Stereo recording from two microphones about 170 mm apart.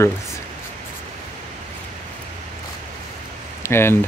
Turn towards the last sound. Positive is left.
turn(degrees=15)  # may be behind; listen again after turning